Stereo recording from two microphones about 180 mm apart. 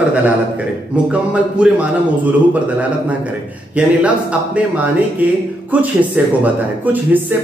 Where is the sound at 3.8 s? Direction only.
5° right (ahead or behind).